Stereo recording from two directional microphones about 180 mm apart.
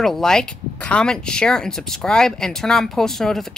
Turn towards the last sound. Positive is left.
turn(degrees=0)  # may be behind; listen again after turning